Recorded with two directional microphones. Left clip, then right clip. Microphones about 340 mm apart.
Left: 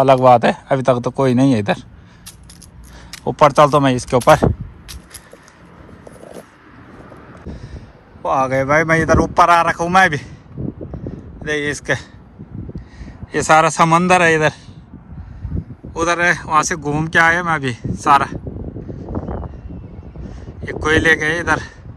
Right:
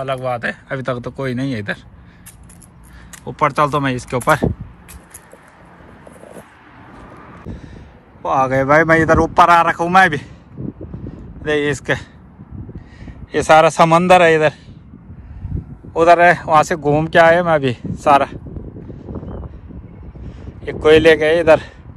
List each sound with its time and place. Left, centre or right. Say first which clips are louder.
0.0 s a man's voice: left 11 dB; centre
3.3 s a man's voice: left 5 dB; centre
7.5 s speech: even; centre
11.4 s speech: right 2 dB; centre
15.9 s speech: right 6 dB; centre
19.1 s vehicle: left 7 dB; left
20.6 s speech: right 5 dB; centre